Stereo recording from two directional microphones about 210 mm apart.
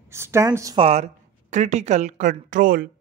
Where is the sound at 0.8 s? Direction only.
30° right (ahead or behind).